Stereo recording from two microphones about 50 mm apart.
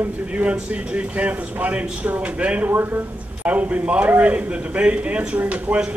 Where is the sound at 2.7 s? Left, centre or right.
Right.